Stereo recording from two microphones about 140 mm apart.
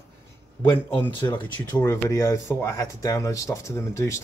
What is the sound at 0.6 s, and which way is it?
Speech, 15° left (ahead or behind).